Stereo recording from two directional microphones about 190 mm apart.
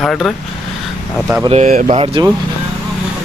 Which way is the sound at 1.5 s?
40° right (ahead or behind).